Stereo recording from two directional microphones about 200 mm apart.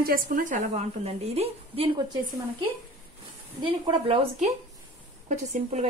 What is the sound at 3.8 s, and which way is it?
Speech, 25° right (ahead or behind).